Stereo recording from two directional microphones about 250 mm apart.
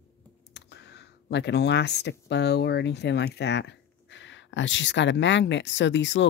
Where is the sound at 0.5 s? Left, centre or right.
Left.